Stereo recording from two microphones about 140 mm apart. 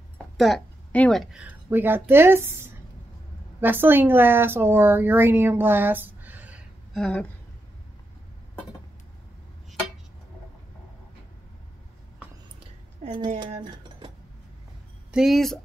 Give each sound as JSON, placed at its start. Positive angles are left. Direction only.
{"t": 0.4, "sound": "a woman's voice", "side_deg": 5}
{"t": 6.9, "sound": "speech", "side_deg": 5}
{"t": 13.6, "sound": "dishes", "side_deg": -35}
{"t": 15.0, "sound": "speech", "side_deg": -5}